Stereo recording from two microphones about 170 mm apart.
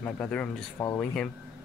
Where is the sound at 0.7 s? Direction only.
20° left (ahead or behind).